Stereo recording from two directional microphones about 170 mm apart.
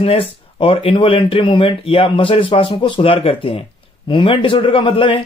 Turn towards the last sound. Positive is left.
turn(degrees=30)  # may be behind; listen again after turning